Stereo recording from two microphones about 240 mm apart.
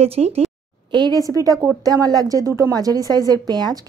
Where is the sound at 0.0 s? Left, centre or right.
Right.